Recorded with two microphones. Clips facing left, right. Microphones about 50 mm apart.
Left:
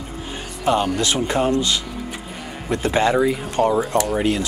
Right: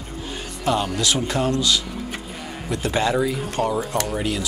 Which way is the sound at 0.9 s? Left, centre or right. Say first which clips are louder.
Left 2 dB; left.